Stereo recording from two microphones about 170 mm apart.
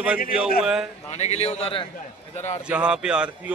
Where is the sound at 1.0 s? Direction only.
40° left (ahead or behind).